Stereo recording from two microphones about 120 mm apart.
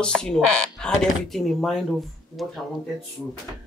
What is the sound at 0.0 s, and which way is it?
Speech, 5° left (ahead or behind).